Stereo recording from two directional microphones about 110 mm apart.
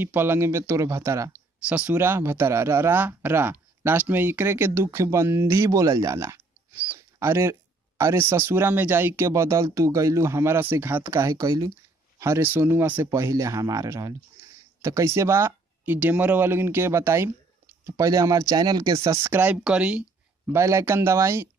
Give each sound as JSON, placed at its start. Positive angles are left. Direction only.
{"t": 0.0, "sound": "speech", "side_deg": -20}
{"t": 1.7, "sound": "speech", "side_deg": -10}
{"t": 6.9, "sound": "a sound", "side_deg": -25}
{"t": 8.0, "sound": "speech", "side_deg": -25}
{"t": 18.9, "sound": "speech", "side_deg": -25}
{"t": 20.4, "sound": "speech", "side_deg": -25}